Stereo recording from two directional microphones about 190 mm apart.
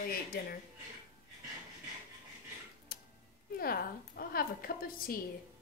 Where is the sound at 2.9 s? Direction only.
50° left (ahead or behind).